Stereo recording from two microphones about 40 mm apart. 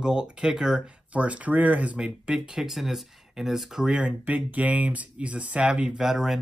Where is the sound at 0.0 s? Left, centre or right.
Centre.